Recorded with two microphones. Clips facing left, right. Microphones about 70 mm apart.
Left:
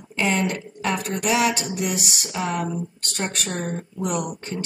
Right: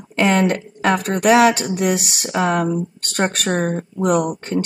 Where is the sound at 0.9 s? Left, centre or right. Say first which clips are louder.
Right 9 dB; right.